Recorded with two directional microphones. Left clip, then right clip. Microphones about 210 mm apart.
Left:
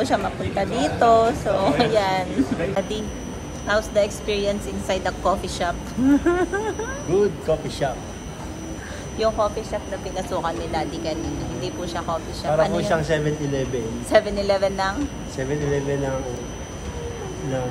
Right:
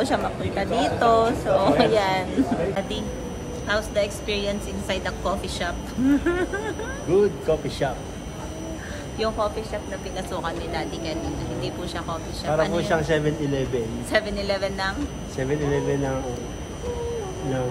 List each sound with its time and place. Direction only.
0.0 s a woman's voice: 5° right (ahead or behind)
3.6 s a woman's voice: centre (ahead or behind)
7.1 s a woman's voice: 15° right (ahead or behind)
9.2 s a woman's voice: centre (ahead or behind)
12.8 s a woman's voice: 15° right (ahead or behind)
14.1 s speech: 5° left (ahead or behind)
15.3 s a woman's voice: 15° right (ahead or behind)